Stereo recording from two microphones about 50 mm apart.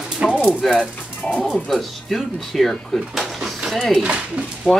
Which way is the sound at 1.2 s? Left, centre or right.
Centre.